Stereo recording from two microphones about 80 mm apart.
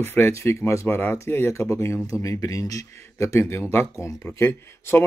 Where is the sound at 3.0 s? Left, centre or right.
Left.